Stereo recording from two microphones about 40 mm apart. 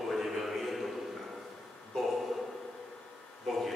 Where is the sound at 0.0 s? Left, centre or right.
Centre.